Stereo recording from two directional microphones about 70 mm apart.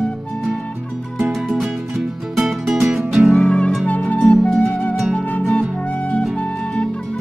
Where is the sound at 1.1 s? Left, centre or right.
Centre.